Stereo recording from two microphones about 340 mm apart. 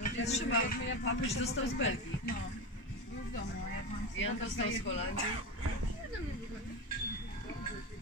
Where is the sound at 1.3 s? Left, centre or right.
Left.